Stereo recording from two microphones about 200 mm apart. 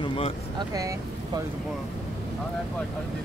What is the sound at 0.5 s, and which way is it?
Speech, 20° right (ahead or behind).